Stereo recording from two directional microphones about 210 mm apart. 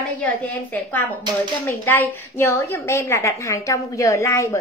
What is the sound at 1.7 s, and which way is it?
A woman's voice, 10° left (ahead or behind).